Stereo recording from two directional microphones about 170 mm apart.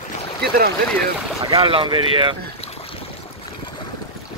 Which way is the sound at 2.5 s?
35° left (ahead or behind).